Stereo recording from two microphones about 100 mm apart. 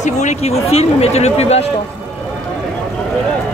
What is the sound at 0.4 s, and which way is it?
Speech, 90° left.